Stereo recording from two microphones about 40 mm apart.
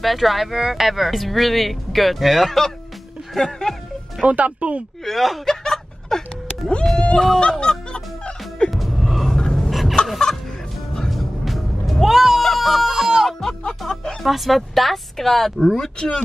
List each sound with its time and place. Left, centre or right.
0.0 s speech: centre
3.3 s speech: centre
4.3 s speech: right
5.0 s a sound: centre
7.0 s speech: left
7.3 s fowl: left
8.6 s music: centre
9.4 s fowl: centre
9.7 s fowl: centre
11.1 s music: centre
13.4 s music: centre
14.2 s speech: centre